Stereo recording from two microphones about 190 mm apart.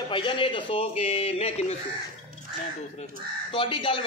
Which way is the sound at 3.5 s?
25° left (ahead or behind).